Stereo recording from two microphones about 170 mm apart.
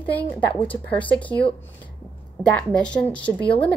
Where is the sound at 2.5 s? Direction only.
5° left (ahead or behind).